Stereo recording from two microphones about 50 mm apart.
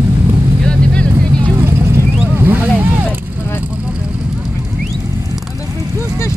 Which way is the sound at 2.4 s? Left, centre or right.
Right.